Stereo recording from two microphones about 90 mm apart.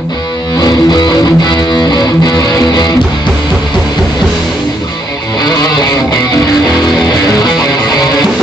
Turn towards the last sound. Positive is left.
turn(degrees=45)  # may be behind; listen again after turning